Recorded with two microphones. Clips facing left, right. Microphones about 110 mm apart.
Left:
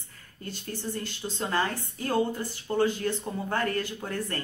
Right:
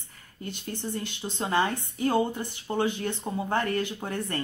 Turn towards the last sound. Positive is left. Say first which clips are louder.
# right 1 dB
turn(degrees=-20)  # may be behind; listen again after turning